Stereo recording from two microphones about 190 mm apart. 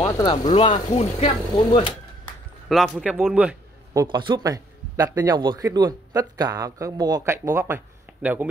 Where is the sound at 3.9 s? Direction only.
20° right (ahead or behind).